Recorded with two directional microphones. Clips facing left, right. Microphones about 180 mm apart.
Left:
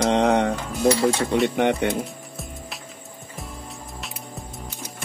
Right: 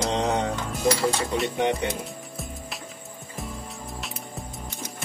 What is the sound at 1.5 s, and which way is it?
Speech, 65° left (ahead or behind).